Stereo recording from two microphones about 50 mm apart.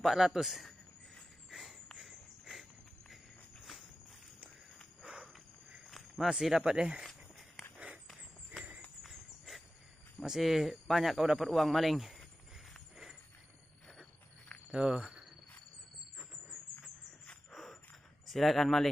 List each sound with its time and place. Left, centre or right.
0.0 s speech: centre
1.5 s a sound: centre
5.0 s a sound: right
6.1 s speech: centre
6.6 s speech: centre
7.0 s walk: centre
7.7 s walk: right
10.2 s speech: centre
14.7 s speech: centre
17.5 s a sound: centre
18.2 s speech: centre